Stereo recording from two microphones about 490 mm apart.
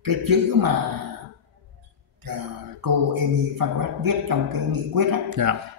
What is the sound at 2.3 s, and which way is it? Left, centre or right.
A man's voice, right.